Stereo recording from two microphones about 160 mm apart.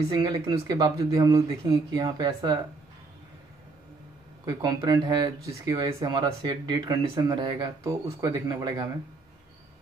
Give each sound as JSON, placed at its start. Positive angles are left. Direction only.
{"t": 0.1, "sound": "speech", "side_deg": -25}
{"t": 4.5, "sound": "speech", "side_deg": -25}